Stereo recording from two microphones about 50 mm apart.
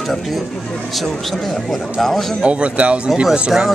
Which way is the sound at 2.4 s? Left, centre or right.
Right.